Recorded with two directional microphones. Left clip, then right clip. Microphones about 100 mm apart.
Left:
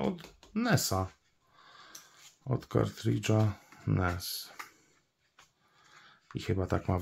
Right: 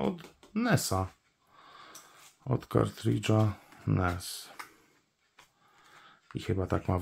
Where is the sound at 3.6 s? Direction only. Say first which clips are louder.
Right 1 dB; 15° right (ahead or behind).